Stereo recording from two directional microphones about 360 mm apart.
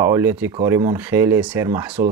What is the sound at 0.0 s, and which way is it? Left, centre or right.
Speech, centre.